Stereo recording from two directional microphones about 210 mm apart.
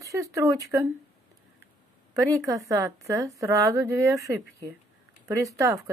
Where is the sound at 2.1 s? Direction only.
15° right (ahead or behind).